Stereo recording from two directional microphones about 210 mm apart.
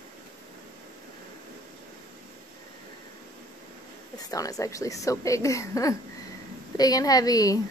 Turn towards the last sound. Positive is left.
turn(degrees=15)  # may be behind; listen again after turning